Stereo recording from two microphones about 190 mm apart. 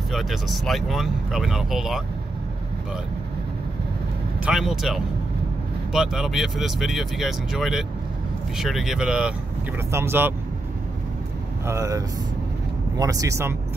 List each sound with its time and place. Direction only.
0.1 s speech: centre (ahead or behind)
4.5 s speech: centre (ahead or behind)
11.6 s speech: 15° right (ahead or behind)